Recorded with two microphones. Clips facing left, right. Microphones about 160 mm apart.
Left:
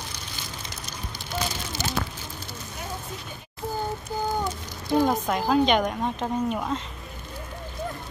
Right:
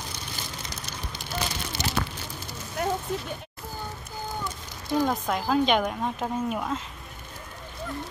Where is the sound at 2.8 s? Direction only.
65° right (ahead or behind).